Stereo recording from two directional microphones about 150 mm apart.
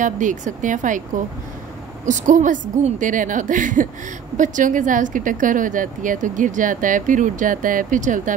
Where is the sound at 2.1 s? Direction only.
55° right (ahead or behind).